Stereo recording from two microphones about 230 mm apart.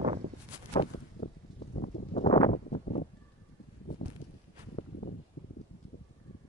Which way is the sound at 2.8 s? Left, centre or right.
Left.